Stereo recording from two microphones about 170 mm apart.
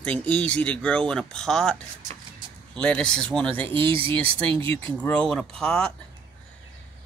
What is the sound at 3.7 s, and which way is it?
Speech, 30° right (ahead or behind).